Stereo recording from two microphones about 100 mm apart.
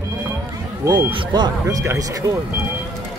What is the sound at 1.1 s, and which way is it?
Speech, 50° right (ahead or behind).